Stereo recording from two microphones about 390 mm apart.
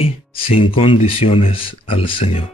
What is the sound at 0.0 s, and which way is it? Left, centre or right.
A man's voice, centre.